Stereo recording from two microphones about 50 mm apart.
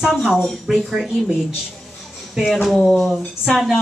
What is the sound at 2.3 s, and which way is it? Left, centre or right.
Speech, centre.